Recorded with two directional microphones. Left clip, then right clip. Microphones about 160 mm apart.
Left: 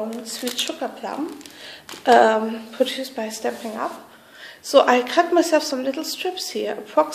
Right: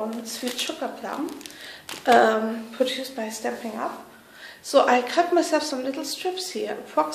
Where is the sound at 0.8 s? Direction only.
30° left (ahead or behind).